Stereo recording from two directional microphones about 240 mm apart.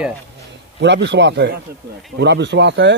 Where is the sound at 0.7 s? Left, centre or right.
Right.